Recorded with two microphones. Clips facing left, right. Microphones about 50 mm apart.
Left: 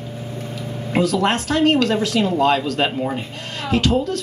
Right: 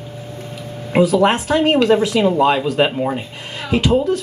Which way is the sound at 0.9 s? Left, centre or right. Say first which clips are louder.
Right 5 dB; centre.